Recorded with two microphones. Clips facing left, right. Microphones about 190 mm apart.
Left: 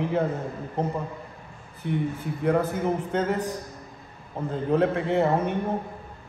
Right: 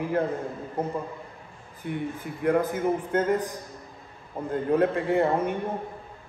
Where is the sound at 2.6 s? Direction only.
10° right (ahead or behind).